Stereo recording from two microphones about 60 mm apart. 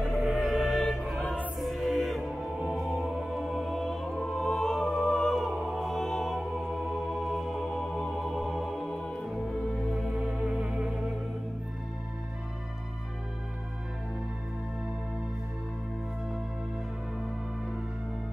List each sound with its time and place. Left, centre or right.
0.0 s music: centre
1.2 s music: centre
1.6 s music: centre
10.4 s music: centre